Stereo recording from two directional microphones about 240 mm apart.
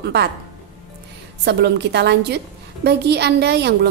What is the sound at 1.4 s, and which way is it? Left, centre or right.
A woman's voice, right.